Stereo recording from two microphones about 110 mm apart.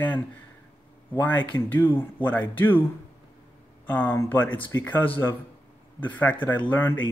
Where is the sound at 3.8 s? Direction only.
20° left (ahead or behind).